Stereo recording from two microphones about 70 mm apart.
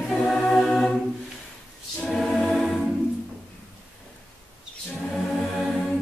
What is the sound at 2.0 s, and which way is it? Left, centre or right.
Choir, centre.